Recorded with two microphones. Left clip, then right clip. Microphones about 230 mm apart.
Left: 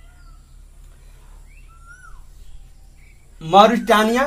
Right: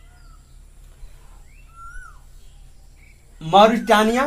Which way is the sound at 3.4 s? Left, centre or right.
Centre.